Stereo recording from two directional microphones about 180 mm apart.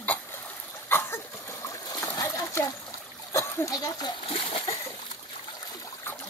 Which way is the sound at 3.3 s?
15° left (ahead or behind).